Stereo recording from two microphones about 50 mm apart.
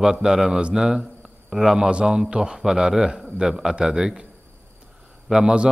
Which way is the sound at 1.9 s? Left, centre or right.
Centre.